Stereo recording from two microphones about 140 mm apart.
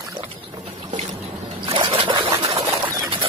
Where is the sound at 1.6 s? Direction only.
40° right (ahead or behind).